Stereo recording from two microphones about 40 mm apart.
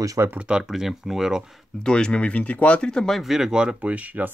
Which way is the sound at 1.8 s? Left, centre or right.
Left.